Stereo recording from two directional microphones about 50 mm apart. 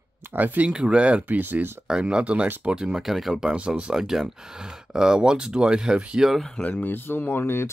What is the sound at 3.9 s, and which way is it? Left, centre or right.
Speech, centre.